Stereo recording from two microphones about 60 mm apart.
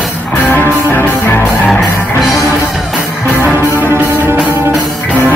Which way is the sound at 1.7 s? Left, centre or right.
Centre.